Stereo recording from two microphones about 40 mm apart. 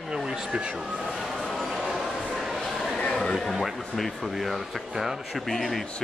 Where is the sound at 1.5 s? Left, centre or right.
Centre.